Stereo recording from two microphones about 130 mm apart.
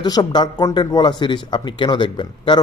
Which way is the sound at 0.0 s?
35° left (ahead or behind).